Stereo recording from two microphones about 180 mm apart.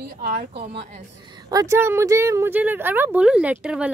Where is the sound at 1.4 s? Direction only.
15° right (ahead or behind).